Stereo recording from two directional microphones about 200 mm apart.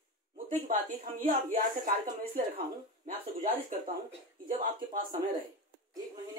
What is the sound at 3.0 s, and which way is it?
Speech, 40° right (ahead or behind).